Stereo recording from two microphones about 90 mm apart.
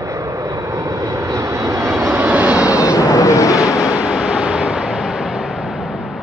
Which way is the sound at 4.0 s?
10° right (ahead or behind).